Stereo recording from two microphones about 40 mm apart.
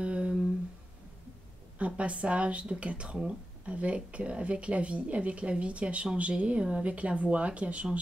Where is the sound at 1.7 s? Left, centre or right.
Right.